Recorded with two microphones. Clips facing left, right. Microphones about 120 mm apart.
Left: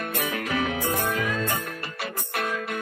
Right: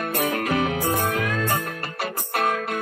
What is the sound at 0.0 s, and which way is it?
Music, 40° right (ahead or behind).